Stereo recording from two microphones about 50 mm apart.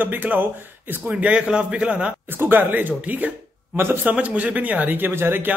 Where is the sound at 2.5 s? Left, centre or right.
Right.